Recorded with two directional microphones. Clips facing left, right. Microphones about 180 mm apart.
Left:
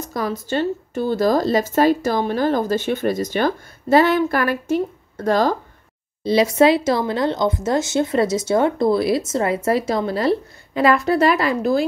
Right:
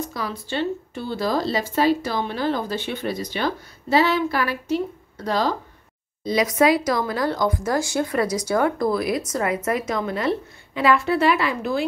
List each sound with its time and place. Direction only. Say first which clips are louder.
0.0 s speech: left 4 dB; 45° left (ahead or behind)
6.2 s a woman's voice: left 4 dB; 30° left (ahead or behind)